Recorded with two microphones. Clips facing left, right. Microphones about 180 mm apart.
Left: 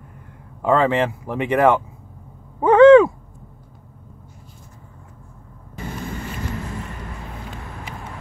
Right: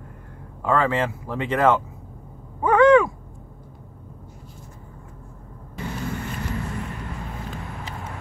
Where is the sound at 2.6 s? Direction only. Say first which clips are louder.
Left 6 dB; 25° left (ahead or behind).